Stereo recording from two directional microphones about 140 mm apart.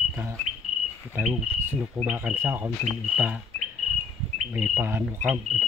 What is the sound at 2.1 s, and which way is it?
Speech, 10° right (ahead or behind).